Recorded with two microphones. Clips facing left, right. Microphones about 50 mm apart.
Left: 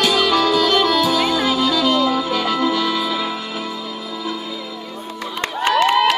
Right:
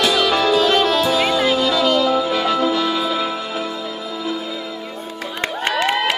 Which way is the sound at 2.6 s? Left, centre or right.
Right.